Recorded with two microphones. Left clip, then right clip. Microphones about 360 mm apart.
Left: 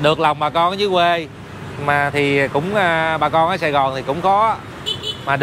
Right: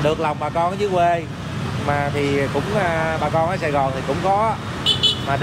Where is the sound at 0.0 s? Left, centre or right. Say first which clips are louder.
Left 5 dB; left.